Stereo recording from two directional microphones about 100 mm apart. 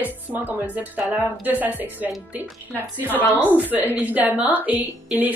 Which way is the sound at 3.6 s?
15° right (ahead or behind).